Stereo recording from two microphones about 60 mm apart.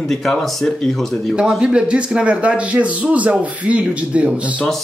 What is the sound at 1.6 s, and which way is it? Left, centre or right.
Speech, centre.